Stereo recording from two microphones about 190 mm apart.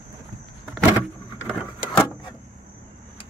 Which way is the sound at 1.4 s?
5° left (ahead or behind).